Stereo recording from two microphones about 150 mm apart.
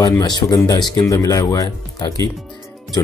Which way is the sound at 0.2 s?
25° left (ahead or behind).